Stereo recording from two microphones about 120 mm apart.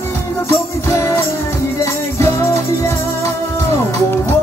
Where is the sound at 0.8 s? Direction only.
25° left (ahead or behind).